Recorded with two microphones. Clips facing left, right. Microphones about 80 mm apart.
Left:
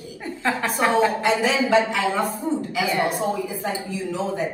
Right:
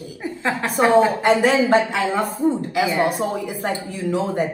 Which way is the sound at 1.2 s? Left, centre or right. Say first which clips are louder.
Right 4 dB; right.